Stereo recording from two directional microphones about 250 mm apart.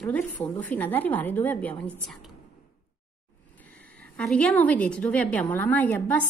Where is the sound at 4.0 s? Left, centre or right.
Centre.